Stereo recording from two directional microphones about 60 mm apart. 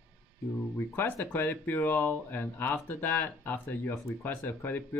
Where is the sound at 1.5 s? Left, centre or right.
Left.